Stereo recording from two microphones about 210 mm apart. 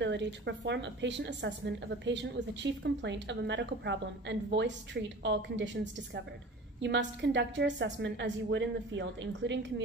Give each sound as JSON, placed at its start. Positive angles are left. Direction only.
{"t": 0.0, "sound": "a woman's voice", "side_deg": -55}